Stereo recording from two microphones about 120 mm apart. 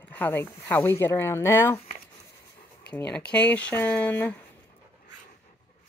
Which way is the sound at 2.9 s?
10° left (ahead or behind).